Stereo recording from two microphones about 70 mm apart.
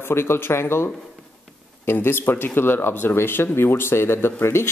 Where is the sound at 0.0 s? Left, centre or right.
Left.